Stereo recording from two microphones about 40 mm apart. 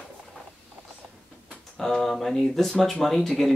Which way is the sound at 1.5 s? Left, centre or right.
Centre.